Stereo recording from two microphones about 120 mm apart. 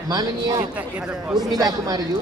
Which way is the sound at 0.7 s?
5° right (ahead or behind).